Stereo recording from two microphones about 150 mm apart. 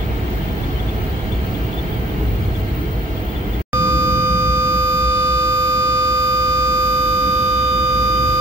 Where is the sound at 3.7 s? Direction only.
20° right (ahead or behind).